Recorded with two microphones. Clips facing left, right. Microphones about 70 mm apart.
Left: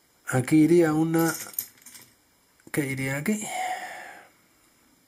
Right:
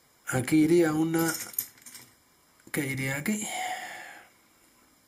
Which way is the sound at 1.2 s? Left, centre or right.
Centre.